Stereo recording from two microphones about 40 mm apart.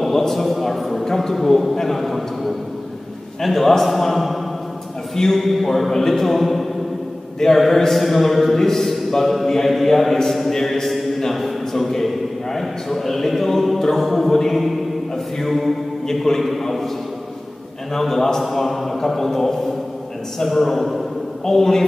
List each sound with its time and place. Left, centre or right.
0.0 s a man's voice: centre
10.1 s a sound: centre
12.5 s a man's voice: centre
17.9 s a man's voice: centre